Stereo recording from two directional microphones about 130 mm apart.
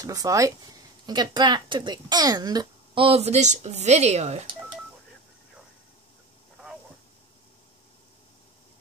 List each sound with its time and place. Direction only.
0.0 s speech: 25° right (ahead or behind)
3.0 s a woman's voice: 50° right (ahead or behind)